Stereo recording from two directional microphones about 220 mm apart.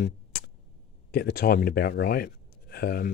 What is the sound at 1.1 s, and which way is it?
Speech, 45° left (ahead or behind).